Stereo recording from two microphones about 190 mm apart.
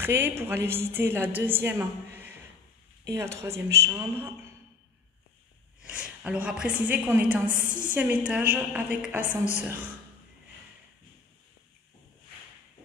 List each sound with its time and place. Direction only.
0.0 s a woman's voice: 10° right (ahead or behind)
5.8 s a woman's voice: 5° right (ahead or behind)